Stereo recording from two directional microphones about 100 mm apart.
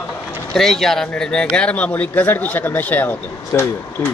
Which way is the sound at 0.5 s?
5° left (ahead or behind).